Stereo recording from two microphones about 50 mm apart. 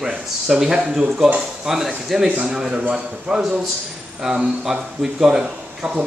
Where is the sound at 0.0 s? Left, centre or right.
Centre.